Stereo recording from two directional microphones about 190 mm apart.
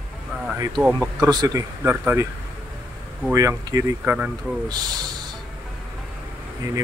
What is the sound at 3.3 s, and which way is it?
Speech, 15° right (ahead or behind).